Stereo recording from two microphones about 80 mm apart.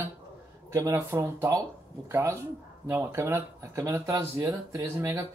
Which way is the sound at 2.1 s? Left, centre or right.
Right.